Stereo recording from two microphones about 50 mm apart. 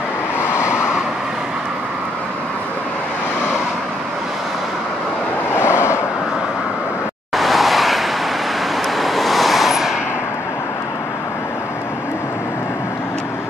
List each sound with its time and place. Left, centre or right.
0.4 s vehicle: left
5.6 s vehicle: left
7.3 s vehicle: centre